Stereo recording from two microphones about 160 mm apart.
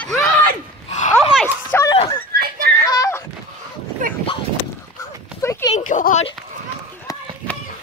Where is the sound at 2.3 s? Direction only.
75° right (ahead or behind).